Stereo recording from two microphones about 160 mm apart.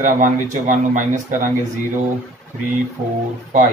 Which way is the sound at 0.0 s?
55° right (ahead or behind).